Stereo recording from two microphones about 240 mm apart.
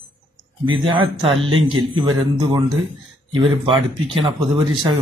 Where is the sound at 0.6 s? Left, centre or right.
Centre.